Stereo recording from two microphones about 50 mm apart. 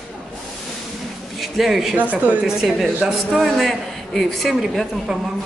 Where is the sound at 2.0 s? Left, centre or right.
Right.